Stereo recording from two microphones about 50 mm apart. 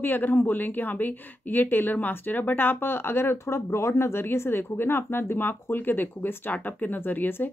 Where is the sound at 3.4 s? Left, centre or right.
Left.